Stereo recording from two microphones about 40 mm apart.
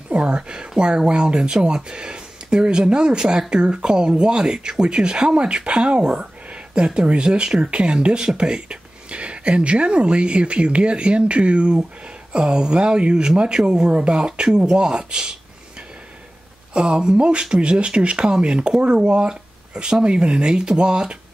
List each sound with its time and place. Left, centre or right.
0.1 s speech: right
7.7 s speech: right
16.7 s speech: right
18.2 s speech: centre